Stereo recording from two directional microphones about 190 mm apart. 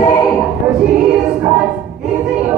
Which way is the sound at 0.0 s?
20° left (ahead or behind).